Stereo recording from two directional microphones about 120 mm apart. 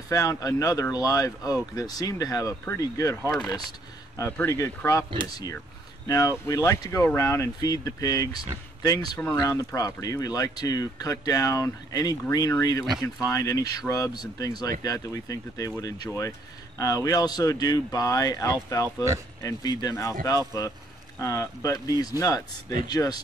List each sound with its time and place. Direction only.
0.1 s speech: 30° left (ahead or behind)
4.4 s speech: 20° left (ahead or behind)
9.4 s speech: 30° left (ahead or behind)